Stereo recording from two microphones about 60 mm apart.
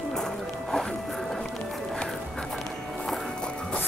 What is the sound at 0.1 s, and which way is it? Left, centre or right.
Music, centre.